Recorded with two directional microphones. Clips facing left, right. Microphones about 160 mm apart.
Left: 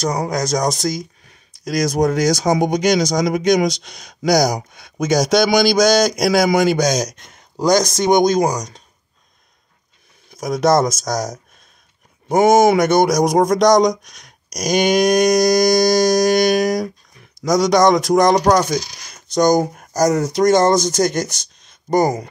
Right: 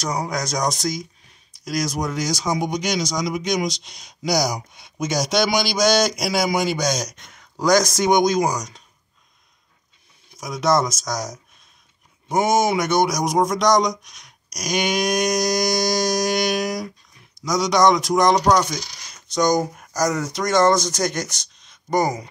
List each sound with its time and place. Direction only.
0.5 s speech: 50° left (ahead or behind)
1.6 s speech: 35° left (ahead or behind)
2.0 s speech: 50° left (ahead or behind)
10.4 s speech: 40° left (ahead or behind)
12.3 s speech: 55° left (ahead or behind)
13.6 s speech: 40° left (ahead or behind)
19.6 s speech: 50° left (ahead or behind)